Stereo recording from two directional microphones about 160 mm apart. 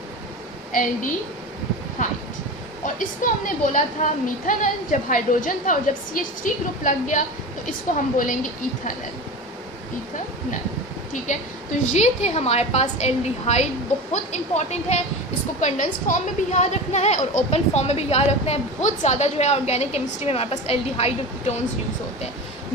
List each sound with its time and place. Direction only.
2.0 s a woman's voice: 55° left (ahead or behind)
11.2 s a woman's voice: 50° left (ahead or behind)